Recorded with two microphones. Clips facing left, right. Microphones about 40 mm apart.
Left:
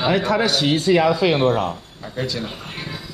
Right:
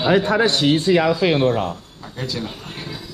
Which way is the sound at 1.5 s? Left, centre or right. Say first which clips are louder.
Left 1 dB; centre.